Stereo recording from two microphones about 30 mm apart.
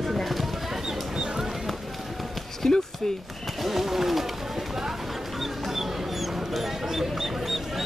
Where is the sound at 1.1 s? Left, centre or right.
Right.